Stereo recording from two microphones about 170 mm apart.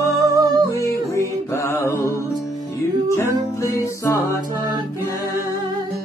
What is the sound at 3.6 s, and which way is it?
Music, 20° left (ahead or behind).